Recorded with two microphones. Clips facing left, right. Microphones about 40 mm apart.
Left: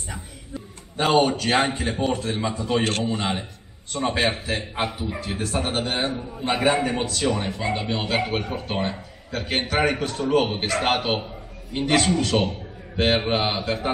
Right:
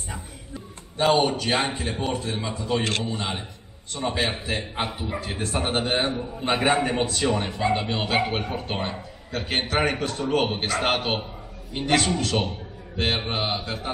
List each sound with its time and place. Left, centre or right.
1.0 s a man's voice: centre
2.8 s a man's voice: left
3.1 s a man's voice: centre